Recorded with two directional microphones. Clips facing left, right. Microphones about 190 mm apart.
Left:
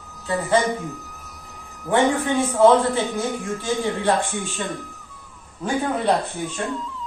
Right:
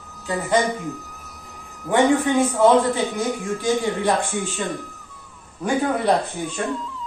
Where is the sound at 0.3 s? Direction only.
15° right (ahead or behind).